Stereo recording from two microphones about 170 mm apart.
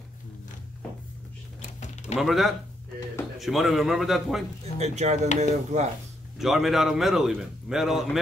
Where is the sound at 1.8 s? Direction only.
45° left (ahead or behind).